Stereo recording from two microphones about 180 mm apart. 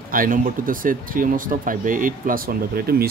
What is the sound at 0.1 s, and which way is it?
Speech, 50° right (ahead or behind).